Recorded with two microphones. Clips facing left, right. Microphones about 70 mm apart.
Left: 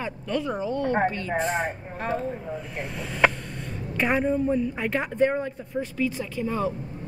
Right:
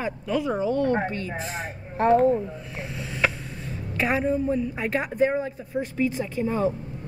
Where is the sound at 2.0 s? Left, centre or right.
Right.